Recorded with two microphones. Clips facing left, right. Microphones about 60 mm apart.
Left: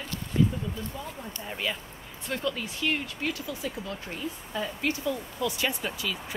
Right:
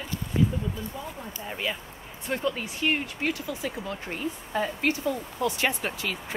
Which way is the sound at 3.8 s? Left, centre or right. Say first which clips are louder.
Right 3 dB; right.